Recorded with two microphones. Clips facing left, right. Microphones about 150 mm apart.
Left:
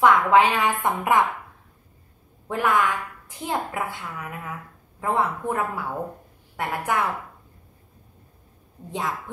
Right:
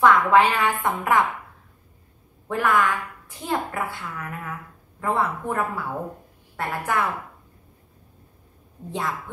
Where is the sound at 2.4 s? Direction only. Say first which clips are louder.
Right 1 dB; 20° left (ahead or behind).